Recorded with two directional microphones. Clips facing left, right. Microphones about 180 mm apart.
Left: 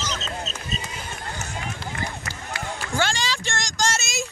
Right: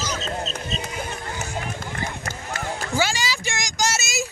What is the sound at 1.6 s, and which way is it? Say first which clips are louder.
Run: right 1 dB; 45° right (ahead or behind).